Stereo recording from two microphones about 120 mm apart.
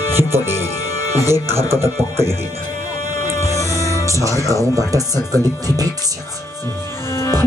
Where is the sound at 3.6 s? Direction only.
25° left (ahead or behind).